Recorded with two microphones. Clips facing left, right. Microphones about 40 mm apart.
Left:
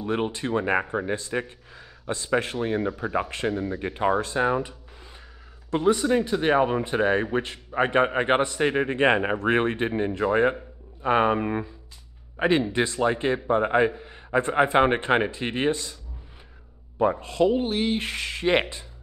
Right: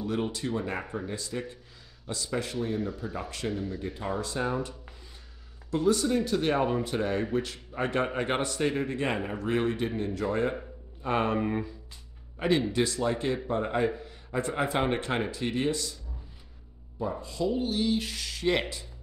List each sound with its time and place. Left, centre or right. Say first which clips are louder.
0.0 s a man's voice: left 4 dB; left
5.7 s a man's voice: left 4 dB; left
5.9 s a man's voice: left 4 dB; left
11.0 s a man's voice: left 6 dB; left
17.0 s a man's voice: left 9 dB; left